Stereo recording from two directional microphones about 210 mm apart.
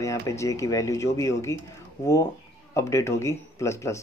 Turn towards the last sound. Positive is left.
turn(degrees=15)  # may be behind; listen again after turning